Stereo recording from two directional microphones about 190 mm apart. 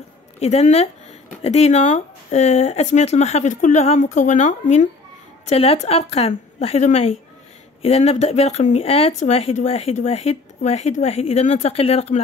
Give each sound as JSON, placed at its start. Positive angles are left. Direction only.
{"t": 0.4, "sound": "speech", "side_deg": 35}